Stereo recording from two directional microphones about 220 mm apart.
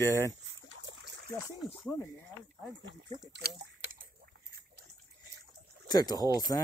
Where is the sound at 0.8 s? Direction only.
50° right (ahead or behind).